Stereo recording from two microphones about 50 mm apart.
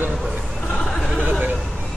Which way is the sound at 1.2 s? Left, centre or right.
Right.